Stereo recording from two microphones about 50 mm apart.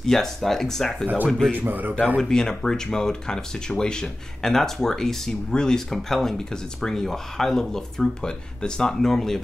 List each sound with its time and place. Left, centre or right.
0.0 s speech: centre
1.0 s speech: right
2.2 s speech: centre
5.9 s speech: centre